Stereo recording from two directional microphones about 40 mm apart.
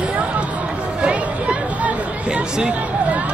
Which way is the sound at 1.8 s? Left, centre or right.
Right.